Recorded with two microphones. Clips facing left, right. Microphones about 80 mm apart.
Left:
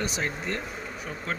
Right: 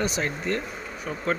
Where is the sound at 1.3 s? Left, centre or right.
Centre.